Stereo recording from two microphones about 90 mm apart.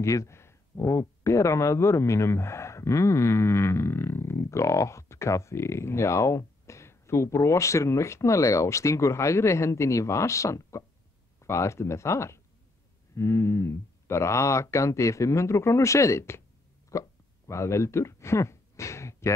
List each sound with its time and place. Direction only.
0.0 s speech: 35° left (ahead or behind)